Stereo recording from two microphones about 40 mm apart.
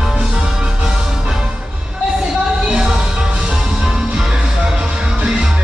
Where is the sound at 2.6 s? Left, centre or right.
Right.